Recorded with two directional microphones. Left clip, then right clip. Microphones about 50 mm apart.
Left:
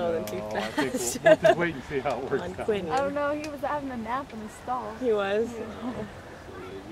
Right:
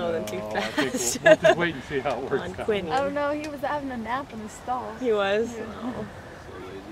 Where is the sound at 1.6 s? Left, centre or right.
Centre.